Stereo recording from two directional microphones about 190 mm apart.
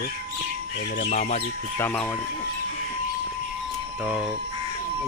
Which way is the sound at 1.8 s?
10° left (ahead or behind).